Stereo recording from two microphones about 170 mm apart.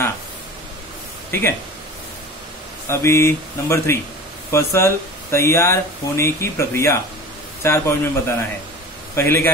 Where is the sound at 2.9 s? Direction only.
15° left (ahead or behind).